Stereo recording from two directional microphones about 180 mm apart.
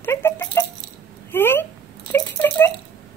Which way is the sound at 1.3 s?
10° left (ahead or behind).